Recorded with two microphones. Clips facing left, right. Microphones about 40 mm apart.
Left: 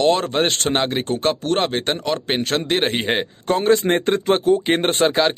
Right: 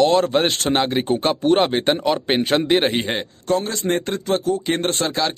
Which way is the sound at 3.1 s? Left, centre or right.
Left.